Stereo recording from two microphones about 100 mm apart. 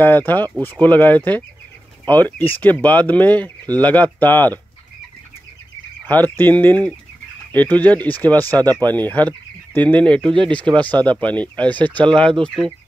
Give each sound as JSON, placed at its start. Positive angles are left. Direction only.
{"t": 0.0, "sound": "speech", "side_deg": 20}
{"t": 6.0, "sound": "speech", "side_deg": 15}
{"t": 8.5, "sound": "speech", "side_deg": -40}
{"t": 8.7, "sound": "speech", "side_deg": 15}